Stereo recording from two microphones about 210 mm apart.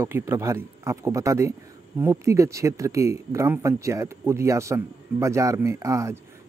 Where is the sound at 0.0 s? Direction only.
10° right (ahead or behind).